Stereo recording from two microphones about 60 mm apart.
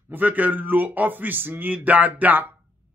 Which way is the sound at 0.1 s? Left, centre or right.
Right.